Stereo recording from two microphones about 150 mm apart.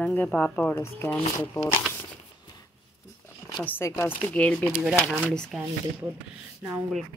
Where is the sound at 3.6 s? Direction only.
15° left (ahead or behind).